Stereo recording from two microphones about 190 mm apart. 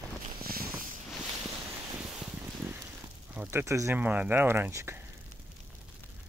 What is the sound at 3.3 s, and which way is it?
Speech, 10° right (ahead or behind).